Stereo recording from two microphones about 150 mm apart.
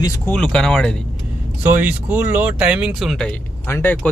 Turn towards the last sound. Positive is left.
turn(degrees=10)  # may be behind; listen again after turning